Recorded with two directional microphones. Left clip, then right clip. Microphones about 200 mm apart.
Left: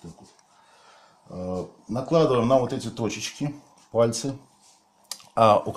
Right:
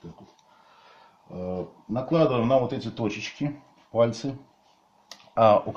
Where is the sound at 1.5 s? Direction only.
25° left (ahead or behind).